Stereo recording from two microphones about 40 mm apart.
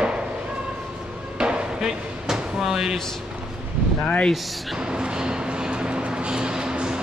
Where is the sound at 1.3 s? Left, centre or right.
Right.